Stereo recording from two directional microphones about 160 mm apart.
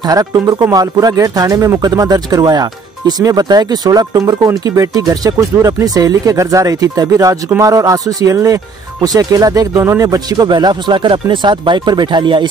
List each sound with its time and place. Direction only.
0.1 s speech: 25° right (ahead or behind)